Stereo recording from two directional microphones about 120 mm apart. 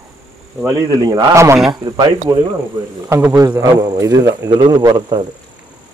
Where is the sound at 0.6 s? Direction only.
35° right (ahead or behind).